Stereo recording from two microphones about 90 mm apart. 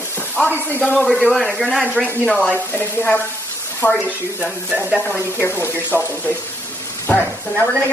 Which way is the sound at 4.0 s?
15° right (ahead or behind).